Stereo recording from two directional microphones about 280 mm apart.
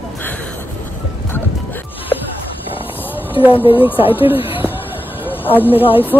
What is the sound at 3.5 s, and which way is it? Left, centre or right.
Speech, centre.